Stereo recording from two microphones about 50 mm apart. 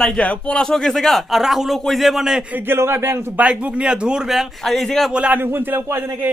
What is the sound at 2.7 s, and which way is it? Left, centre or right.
Speech, right.